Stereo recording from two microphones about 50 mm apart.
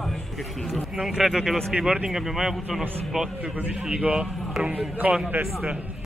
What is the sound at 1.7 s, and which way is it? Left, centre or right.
Speech, right.